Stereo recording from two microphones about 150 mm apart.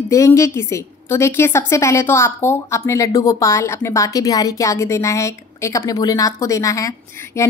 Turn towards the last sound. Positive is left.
turn(degrees=20)  # may be behind; listen again after turning